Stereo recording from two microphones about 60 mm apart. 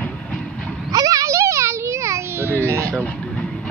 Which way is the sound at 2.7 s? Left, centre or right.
Right.